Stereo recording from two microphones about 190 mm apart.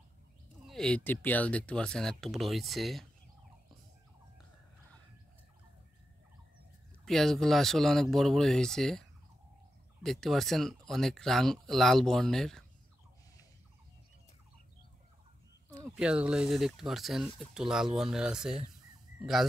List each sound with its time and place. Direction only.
0.7 s speech: 5° left (ahead or behind)
7.1 s speech: centre (ahead or behind)
10.0 s speech: centre (ahead or behind)
16.0 s speech: 5° right (ahead or behind)